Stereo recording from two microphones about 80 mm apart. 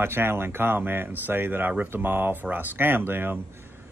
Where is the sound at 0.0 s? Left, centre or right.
Right.